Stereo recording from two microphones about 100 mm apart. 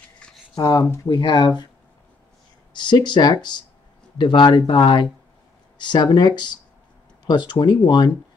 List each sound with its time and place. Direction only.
0.2 s shuffling cards: 10° left (ahead or behind)
0.6 s speech: 35° left (ahead or behind)
1.0 s speech: 50° left (ahead or behind)
2.7 s speech: 50° left (ahead or behind)